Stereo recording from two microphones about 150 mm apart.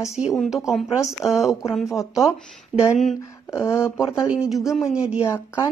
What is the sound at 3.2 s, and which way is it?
Speech, 20° left (ahead or behind).